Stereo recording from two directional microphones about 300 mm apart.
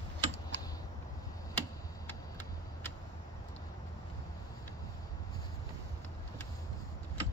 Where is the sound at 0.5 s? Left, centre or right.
Right.